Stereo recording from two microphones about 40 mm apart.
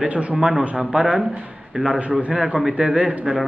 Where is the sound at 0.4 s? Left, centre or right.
Centre.